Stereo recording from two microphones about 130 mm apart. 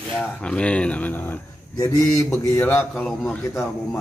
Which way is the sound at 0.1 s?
10° left (ahead or behind).